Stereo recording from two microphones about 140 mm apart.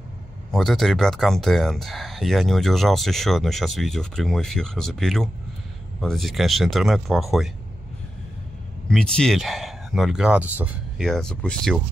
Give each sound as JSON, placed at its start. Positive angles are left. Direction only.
{"t": 0.5, "sound": "speech", "side_deg": 0}
{"t": 8.8, "sound": "speech", "side_deg": 5}
{"t": 11.0, "sound": "speech", "side_deg": 5}